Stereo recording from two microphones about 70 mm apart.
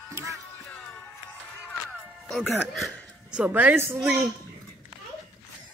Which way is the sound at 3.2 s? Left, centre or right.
Centre.